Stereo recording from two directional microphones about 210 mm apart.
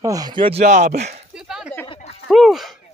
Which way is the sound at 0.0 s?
15° right (ahead or behind).